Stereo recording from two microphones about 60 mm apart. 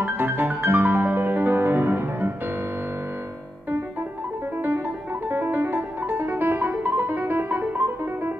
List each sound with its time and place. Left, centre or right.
0.0 s music: right
5.3 s music: right